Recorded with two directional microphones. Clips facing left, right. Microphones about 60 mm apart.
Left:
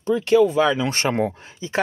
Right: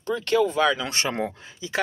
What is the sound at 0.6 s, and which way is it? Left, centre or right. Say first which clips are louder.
Speech: left 3 dB; left.